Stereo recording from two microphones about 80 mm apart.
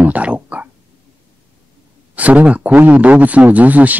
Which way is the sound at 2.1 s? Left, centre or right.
Centre.